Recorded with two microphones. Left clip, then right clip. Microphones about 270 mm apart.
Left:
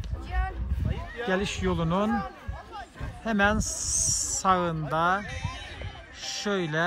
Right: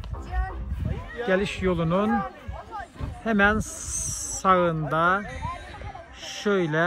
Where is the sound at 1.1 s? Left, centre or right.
Centre.